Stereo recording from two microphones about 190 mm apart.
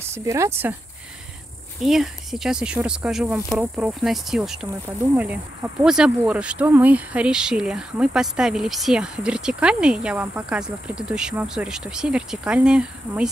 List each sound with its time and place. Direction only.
0.1 s speech: 15° right (ahead or behind)
1.9 s speech: centre (ahead or behind)